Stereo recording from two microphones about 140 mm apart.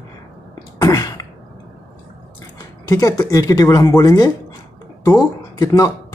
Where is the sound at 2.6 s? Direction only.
25° left (ahead or behind).